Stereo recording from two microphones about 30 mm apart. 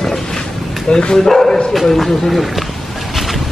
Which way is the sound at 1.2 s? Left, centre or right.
Centre.